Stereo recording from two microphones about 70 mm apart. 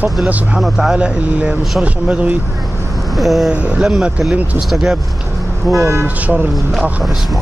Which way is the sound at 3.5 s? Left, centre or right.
Centre.